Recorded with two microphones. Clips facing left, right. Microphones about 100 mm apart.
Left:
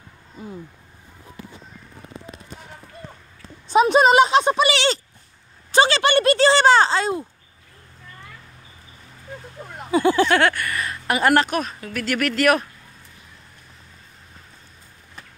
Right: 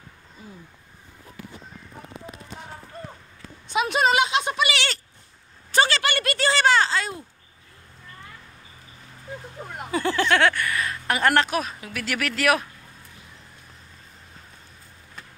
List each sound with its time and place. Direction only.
3.7 s speech: 30° left (ahead or behind)
5.7 s a sound: 25° left (ahead or behind)
9.8 s speech: 15° left (ahead or behind); by 12.6 s centre (ahead or behind)